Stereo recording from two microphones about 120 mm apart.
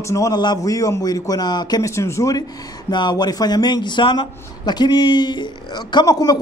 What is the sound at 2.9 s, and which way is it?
A man's voice, 35° left (ahead or behind).